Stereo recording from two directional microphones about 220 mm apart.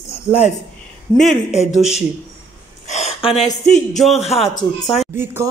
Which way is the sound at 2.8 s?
30° left (ahead or behind).